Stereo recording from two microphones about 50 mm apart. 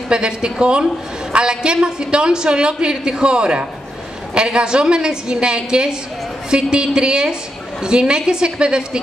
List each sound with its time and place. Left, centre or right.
0.1 s a woman's voice: centre